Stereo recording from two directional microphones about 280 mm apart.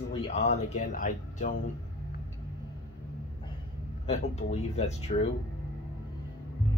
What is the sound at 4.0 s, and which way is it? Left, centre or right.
Speech, left.